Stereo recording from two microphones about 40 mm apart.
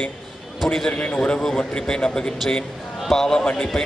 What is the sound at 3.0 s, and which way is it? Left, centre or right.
Speech, centre.